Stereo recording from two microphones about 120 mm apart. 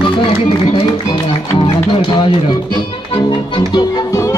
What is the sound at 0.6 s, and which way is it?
Speech, 40° left (ahead or behind).